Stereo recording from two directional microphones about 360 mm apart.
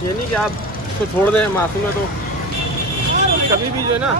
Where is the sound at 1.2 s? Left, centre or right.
Centre.